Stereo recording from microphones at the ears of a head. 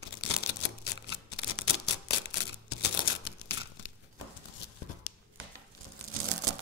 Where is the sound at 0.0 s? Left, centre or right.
Left.